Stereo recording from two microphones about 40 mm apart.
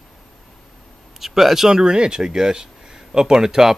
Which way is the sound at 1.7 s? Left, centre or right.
Right.